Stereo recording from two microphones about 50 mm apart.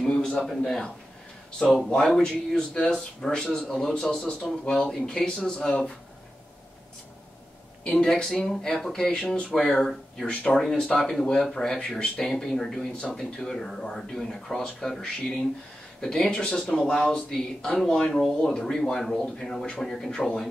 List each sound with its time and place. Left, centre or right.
0.0 s a sound: centre
0.6 s speech: centre
8.0 s speech: centre
10.2 s speech: left
10.9 s speech: centre
12.9 s speech: centre